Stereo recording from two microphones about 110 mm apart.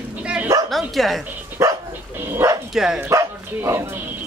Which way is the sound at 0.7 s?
Centre (ahead or behind).